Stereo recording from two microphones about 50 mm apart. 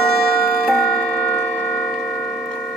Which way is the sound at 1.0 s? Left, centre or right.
Centre.